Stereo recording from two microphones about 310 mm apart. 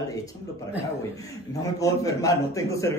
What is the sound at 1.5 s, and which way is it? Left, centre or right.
A man's voice, centre.